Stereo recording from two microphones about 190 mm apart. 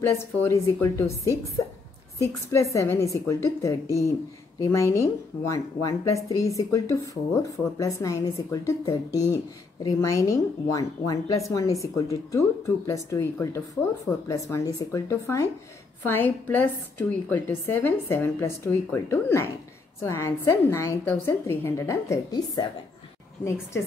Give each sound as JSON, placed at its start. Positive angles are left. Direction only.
{"t": 0.0, "sound": "speech", "side_deg": 15}
{"t": 2.5, "sound": "speech", "side_deg": 15}